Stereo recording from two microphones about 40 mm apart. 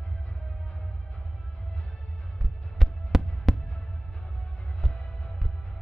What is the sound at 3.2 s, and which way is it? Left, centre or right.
Fireworks, left.